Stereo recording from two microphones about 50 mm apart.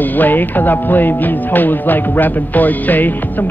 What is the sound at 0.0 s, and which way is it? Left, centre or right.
Speech, left.